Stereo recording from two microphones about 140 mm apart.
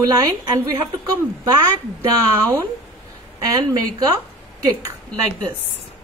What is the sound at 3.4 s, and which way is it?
Speech, 30° right (ahead or behind).